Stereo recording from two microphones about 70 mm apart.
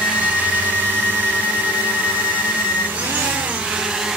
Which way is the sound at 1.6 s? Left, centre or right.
Right.